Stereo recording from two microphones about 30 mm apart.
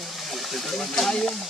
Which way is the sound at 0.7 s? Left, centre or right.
Centre.